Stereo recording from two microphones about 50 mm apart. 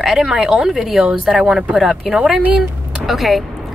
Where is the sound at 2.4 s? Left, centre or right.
Right.